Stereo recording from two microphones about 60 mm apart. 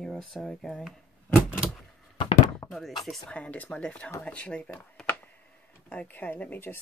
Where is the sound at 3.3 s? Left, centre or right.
Left.